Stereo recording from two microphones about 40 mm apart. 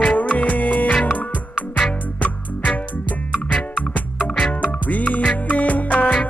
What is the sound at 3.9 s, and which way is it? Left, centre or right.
Music, left.